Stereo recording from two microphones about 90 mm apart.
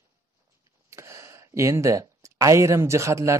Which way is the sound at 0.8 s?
30° right (ahead or behind).